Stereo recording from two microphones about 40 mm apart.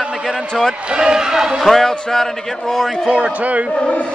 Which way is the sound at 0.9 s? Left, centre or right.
Centre.